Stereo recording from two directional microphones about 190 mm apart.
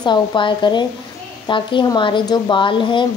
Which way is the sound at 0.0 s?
25° left (ahead or behind).